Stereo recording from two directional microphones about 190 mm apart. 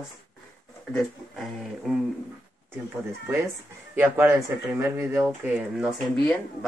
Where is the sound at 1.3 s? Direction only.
Centre (ahead or behind).